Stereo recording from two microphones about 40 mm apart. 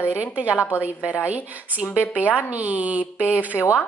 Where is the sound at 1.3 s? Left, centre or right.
Right.